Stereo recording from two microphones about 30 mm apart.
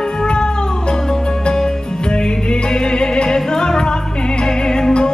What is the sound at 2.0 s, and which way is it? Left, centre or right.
Music, left.